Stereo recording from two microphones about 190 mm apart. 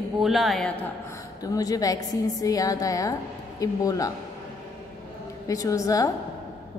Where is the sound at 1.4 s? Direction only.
20° left (ahead or behind).